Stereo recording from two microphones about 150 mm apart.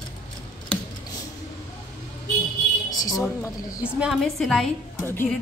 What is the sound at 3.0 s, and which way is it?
Speech, 20° left (ahead or behind).